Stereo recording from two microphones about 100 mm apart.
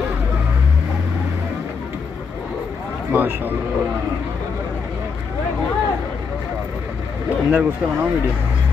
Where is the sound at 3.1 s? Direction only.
20° right (ahead or behind).